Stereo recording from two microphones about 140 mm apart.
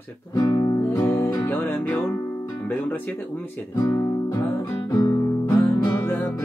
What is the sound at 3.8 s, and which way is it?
Guitar, 25° left (ahead or behind).